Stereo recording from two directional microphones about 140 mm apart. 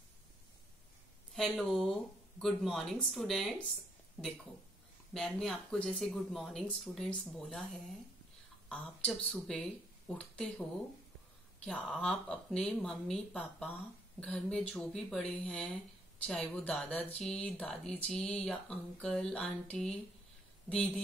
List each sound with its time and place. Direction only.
1.3 s speech: centre (ahead or behind)
4.2 s speech: 15° left (ahead or behind)
5.1 s speech: 5° left (ahead or behind)
11.6 s speech: 10° left (ahead or behind)